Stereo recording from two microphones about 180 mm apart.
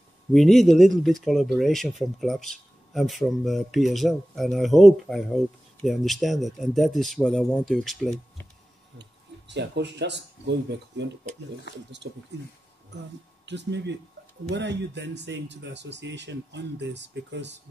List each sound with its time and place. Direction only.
0.3 s speech: centre (ahead or behind)
9.5 s speech: 75° right (ahead or behind)
12.1 s speech: 60° right (ahead or behind)
13.5 s speech: 75° right (ahead or behind)